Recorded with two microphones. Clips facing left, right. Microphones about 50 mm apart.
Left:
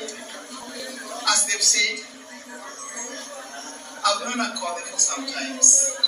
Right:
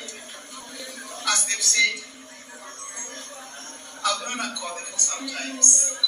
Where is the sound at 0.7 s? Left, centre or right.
Right.